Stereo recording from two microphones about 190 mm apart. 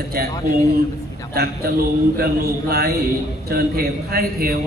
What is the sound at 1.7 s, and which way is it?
A man's voice, 50° right (ahead or behind).